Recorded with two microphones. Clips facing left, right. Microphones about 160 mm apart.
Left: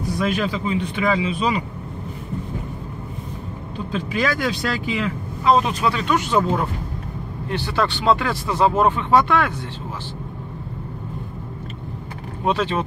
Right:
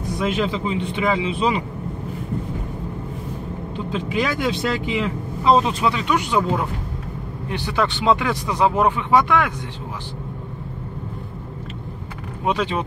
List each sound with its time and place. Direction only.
0.0 s speech: 20° right (ahead or behind)
3.7 s speech: 20° right (ahead or behind)
7.4 s speech: 15° right (ahead or behind)
12.4 s speech: 15° right (ahead or behind)